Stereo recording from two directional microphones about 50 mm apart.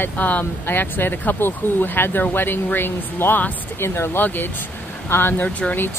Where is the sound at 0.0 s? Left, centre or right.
Left.